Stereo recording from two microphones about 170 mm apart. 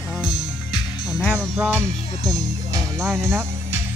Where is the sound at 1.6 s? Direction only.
10° right (ahead or behind).